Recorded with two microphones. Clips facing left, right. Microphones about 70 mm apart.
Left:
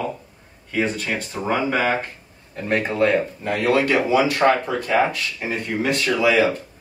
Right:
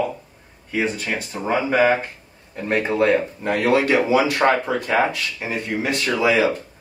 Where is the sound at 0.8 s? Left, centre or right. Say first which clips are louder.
Even; centre.